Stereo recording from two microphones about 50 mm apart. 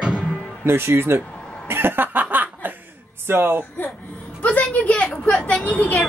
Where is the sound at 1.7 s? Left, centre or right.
Right.